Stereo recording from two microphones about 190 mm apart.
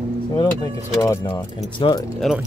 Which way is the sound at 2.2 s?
Centre (ahead or behind).